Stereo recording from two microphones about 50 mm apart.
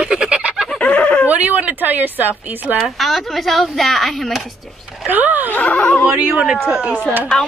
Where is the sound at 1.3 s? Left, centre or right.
Right.